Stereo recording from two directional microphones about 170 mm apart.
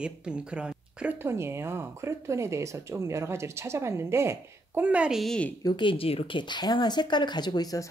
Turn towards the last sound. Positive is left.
turn(degrees=20)  # may be behind; listen again after turning